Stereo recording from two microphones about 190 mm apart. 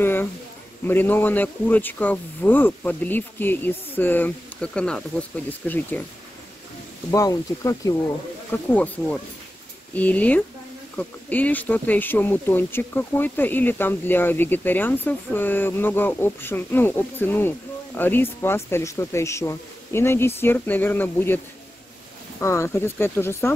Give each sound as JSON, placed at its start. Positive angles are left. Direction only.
{"t": 0.0, "sound": "a man's voice", "side_deg": 10}
{"t": 7.1, "sound": "speech", "side_deg": 15}
{"t": 22.4, "sound": "speech", "side_deg": 15}